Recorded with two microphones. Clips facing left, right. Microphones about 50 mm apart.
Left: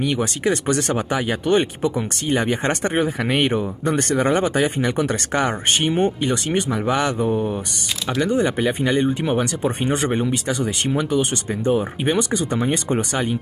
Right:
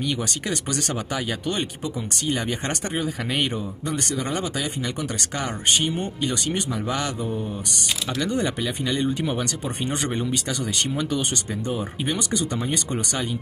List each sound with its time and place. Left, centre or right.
0.0 s speech: left
8.2 s speech: centre
8.6 s speech: left
9.0 s speech: left